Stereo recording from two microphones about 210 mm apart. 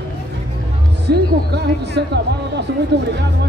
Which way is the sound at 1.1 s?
55° right (ahead or behind).